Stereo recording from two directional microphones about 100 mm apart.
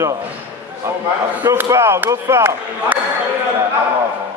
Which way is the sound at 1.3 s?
20° right (ahead or behind).